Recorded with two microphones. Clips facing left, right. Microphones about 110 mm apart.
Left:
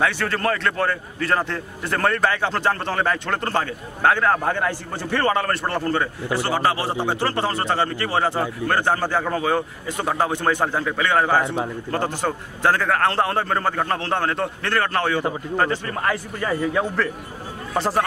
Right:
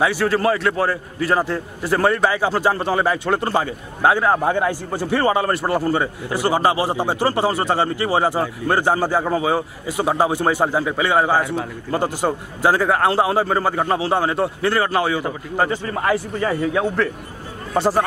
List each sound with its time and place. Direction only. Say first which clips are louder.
0.0 s a man's voice: right 4 dB; 5° right (ahead or behind)
11.4 s a man's voice: even; 20° left (ahead or behind)
11.9 s a man's voice: right 5 dB; 10° right (ahead or behind)